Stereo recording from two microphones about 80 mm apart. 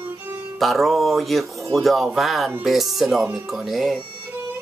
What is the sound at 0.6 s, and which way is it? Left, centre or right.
Speech, centre.